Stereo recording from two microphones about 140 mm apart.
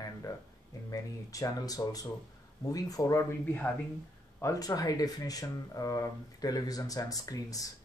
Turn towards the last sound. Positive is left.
turn(degrees=25)  # may be behind; listen again after turning